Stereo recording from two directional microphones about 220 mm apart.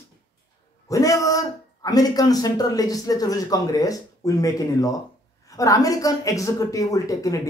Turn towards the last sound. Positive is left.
turn(degrees=15)  # may be behind; listen again after turning